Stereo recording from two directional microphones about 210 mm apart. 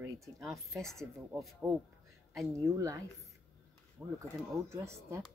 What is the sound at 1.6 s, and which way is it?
Speech, 5° right (ahead or behind).